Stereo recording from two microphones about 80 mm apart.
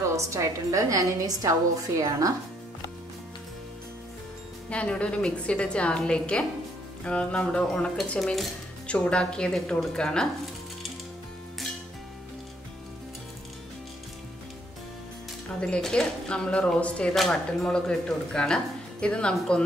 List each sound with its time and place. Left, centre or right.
0.1 s a woman's voice: right
4.6 s speech: centre
8.2 s speech: centre
8.8 s speech: centre
15.6 s speech: centre